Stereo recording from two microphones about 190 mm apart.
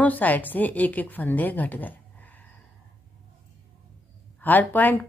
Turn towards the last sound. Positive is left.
turn(degrees=10)  # may be behind; listen again after turning